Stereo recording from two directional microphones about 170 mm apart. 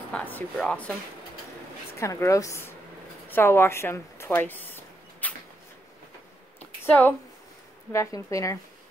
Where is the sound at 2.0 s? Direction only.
20° left (ahead or behind).